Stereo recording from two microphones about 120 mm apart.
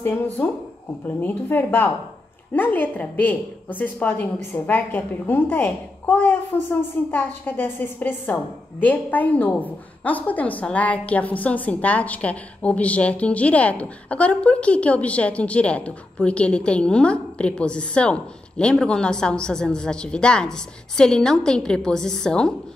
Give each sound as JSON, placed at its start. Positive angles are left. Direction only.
{"t": 0.0, "sound": "a woman's voice", "side_deg": 20}